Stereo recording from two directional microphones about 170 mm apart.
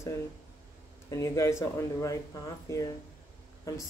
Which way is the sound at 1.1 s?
15° left (ahead or behind).